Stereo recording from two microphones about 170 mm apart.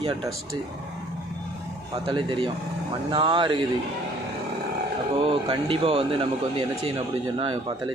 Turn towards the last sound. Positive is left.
turn(degrees=-30)  # may be behind; listen again after turning